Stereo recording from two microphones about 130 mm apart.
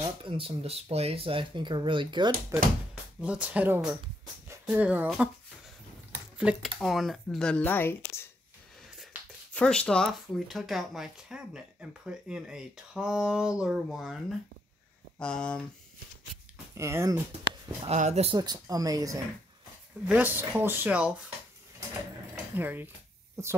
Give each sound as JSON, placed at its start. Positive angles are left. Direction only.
{"t": 0.2, "sound": "speech", "side_deg": -45}
{"t": 3.2, "sound": "speech", "side_deg": -10}
{"t": 6.3, "sound": "speech", "side_deg": -10}
{"t": 9.5, "sound": "speech", "side_deg": 5}
{"t": 16.7, "sound": "speech", "side_deg": -20}
{"t": 17.8, "sound": "speech", "side_deg": -60}
{"t": 18.3, "sound": "speech", "side_deg": -30}
{"t": 20.1, "sound": "speech", "side_deg": -15}
{"t": 22.6, "sound": "speech", "side_deg": -15}